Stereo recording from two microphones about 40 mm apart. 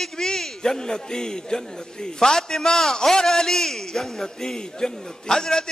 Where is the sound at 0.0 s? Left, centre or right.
Centre.